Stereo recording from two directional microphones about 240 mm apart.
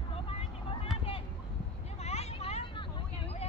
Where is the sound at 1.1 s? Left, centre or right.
Left.